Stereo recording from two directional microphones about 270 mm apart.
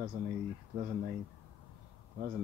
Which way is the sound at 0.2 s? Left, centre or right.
Right.